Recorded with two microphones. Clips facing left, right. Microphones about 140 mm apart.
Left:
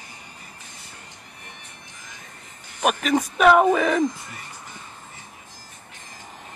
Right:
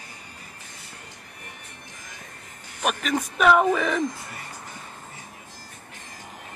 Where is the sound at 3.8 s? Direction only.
5° left (ahead or behind).